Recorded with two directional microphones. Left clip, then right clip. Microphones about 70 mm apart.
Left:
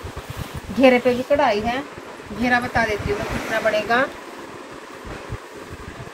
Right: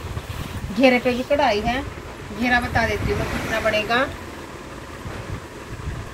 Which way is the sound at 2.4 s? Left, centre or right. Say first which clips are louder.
Left 1 dB; left.